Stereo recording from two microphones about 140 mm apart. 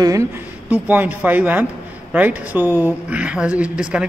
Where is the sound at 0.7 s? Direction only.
10° right (ahead or behind).